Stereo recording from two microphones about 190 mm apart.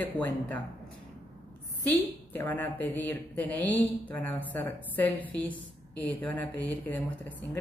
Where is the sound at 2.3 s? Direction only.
10° left (ahead or behind).